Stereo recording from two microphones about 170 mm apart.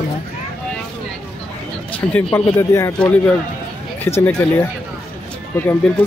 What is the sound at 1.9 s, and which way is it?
Speech, 10° left (ahead or behind).